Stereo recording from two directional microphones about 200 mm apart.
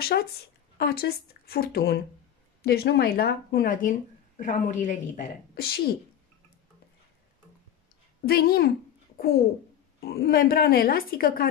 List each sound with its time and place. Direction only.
0.0 s speech: 50° left (ahead or behind)
8.3 s a child's voice: 50° left (ahead or behind)